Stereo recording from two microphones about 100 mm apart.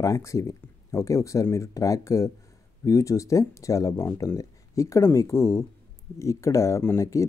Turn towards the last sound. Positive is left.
turn(degrees=30)  # may be behind; listen again after turning